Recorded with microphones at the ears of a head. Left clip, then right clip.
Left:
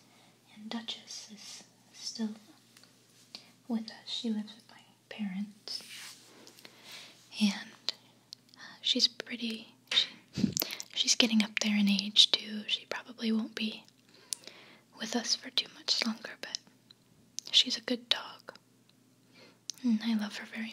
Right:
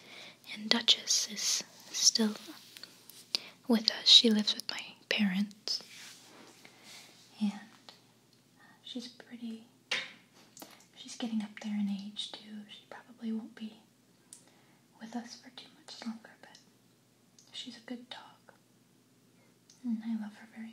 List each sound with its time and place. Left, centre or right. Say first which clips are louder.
0.0 s whispering: right 12 dB; right
7.2 s whispering: left 6 dB; left
19.6 s speech: left 7 dB; left